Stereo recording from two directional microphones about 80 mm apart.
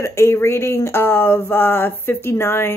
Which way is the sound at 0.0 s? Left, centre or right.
Left.